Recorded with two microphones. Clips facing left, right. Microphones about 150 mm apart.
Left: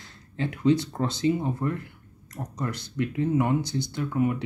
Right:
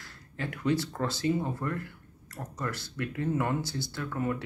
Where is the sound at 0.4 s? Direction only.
20° left (ahead or behind).